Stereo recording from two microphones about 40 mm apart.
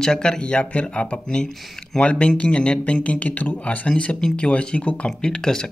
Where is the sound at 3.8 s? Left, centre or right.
Left.